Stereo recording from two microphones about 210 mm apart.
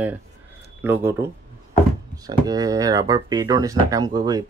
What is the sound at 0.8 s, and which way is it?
Speech, 10° right (ahead or behind).